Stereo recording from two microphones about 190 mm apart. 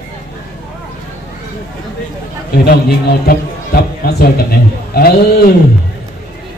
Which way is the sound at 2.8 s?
55° left (ahead or behind).